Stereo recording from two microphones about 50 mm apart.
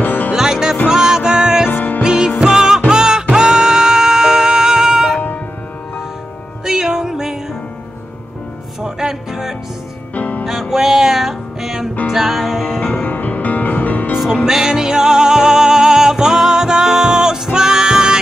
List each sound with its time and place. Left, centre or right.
0.0 s music: left
0.3 s music: centre
1.7 s music: left
2.0 s music: centre
6.6 s music: centre
8.8 s music: centre
10.1 s music: left
10.4 s music: centre
12.8 s music: left
14.1 s music: centre